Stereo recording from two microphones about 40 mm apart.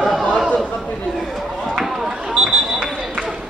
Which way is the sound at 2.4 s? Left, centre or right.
Right.